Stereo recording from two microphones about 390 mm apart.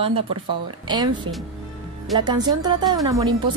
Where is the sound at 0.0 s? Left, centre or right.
Centre.